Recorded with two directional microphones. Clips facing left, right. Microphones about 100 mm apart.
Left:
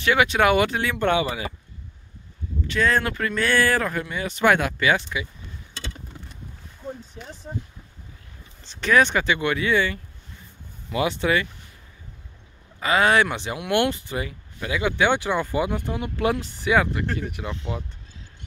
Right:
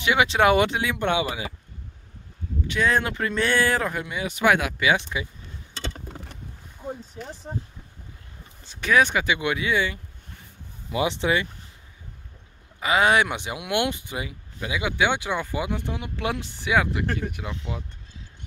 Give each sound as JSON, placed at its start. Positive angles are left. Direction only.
{"t": 0.0, "sound": "speech", "side_deg": -20}
{"t": 0.7, "sound": "speech", "side_deg": -15}
{"t": 2.6, "sound": "speech", "side_deg": -15}
{"t": 6.8, "sound": "a sound", "side_deg": -10}
{"t": 8.6, "sound": "speech", "side_deg": -10}
{"t": 12.8, "sound": "speech", "side_deg": -15}
{"t": 15.7, "sound": "speech", "side_deg": 0}